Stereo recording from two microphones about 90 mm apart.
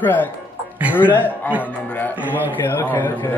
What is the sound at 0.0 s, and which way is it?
Speech, 20° left (ahead or behind).